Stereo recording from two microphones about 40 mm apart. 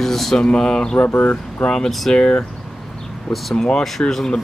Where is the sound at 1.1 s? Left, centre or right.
Left.